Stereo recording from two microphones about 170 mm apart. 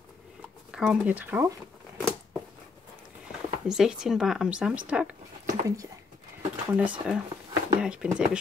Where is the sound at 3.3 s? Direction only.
5° right (ahead or behind).